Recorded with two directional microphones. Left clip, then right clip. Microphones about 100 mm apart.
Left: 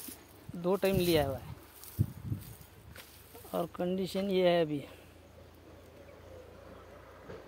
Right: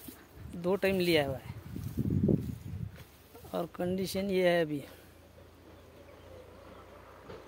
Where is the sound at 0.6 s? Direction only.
25° right (ahead or behind).